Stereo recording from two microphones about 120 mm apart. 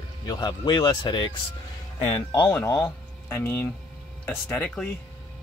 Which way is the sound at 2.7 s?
20° left (ahead or behind).